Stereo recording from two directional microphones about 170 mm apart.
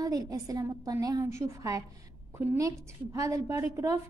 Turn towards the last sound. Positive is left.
turn(degrees=-20)  # may be behind; listen again after turning